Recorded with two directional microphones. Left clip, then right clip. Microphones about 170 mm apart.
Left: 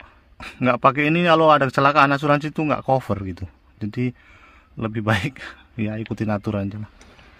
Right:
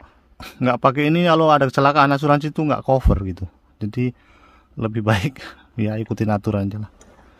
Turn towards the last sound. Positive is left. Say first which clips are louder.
# right 3 dB
turn(degrees=-30)  # may be behind; listen again after turning